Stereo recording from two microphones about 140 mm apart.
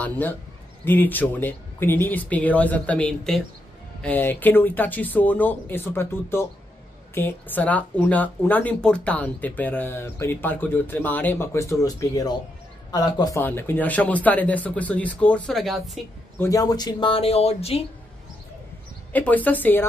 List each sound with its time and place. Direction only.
0.0 s a man's voice: 10° left (ahead or behind); by 13.4 s 30° left (ahead or behind)
13.4 s speech: 15° left (ahead or behind)
16.3 s speech: 25° left (ahead or behind); by 17.8 s 45° left (ahead or behind)
19.1 s speech: 10° left (ahead or behind)